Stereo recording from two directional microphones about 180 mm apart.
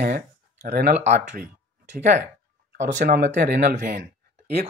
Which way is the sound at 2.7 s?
45° right (ahead or behind).